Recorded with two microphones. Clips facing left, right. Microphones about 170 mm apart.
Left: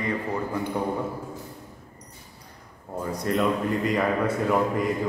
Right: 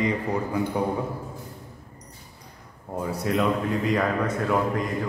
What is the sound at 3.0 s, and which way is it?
Speech, 5° right (ahead or behind).